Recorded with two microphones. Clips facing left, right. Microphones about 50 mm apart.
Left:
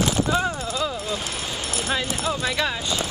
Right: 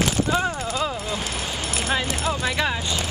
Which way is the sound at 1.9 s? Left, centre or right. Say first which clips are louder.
Right 1 dB; centre.